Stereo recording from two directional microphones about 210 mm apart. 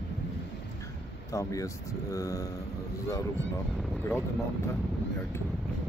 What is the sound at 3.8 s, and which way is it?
Speech, 5° left (ahead or behind).